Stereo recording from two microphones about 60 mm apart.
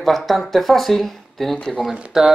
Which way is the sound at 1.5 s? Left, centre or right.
Centre.